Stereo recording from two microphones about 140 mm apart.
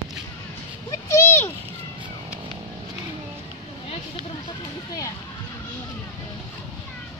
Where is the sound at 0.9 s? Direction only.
20° left (ahead or behind).